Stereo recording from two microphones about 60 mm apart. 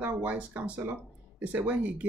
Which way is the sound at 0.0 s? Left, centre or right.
Right.